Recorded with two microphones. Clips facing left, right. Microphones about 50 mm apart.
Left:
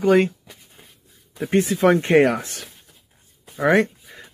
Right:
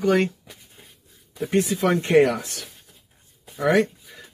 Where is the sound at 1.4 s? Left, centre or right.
Left.